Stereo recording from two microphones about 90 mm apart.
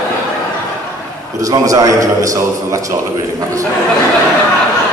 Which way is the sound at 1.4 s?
40° right (ahead or behind).